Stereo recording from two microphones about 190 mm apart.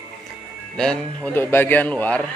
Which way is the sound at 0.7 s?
5° left (ahead or behind).